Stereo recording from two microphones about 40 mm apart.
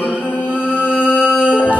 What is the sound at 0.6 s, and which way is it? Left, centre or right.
Music, left.